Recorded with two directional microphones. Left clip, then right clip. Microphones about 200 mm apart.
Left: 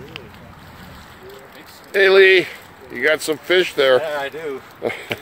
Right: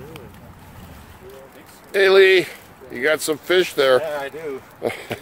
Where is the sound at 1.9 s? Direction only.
5° right (ahead or behind).